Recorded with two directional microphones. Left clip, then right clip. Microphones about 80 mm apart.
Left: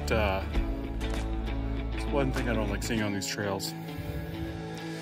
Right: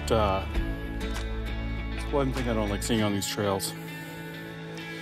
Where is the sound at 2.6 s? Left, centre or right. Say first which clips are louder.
Right 3 dB; right.